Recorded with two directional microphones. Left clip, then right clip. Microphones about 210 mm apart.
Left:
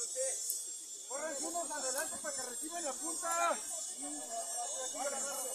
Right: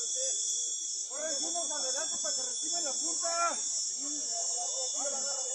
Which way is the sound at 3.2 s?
20° right (ahead or behind).